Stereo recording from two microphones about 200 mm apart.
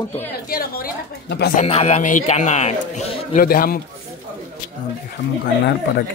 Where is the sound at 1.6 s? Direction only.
35° left (ahead or behind).